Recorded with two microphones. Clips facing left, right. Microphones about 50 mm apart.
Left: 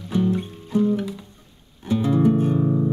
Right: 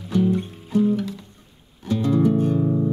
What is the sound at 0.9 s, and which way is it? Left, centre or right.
Music, centre.